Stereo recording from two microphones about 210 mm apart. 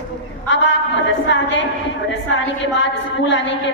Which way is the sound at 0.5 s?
60° left (ahead or behind).